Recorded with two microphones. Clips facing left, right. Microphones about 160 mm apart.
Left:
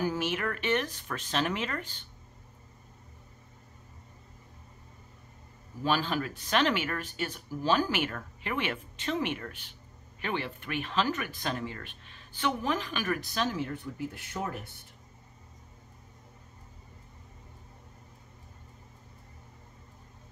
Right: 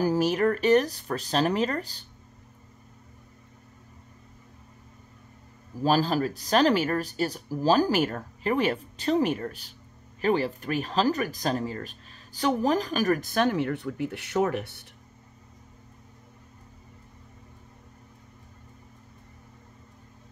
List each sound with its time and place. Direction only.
0.0 s speech: 40° right (ahead or behind)
5.8 s speech: 40° right (ahead or behind); by 14.9 s 75° right (ahead or behind)